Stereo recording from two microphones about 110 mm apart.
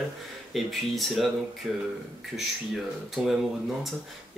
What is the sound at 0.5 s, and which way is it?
Speech, centre (ahead or behind).